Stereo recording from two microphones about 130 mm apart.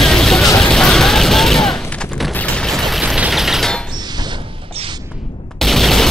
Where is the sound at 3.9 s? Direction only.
35° right (ahead or behind).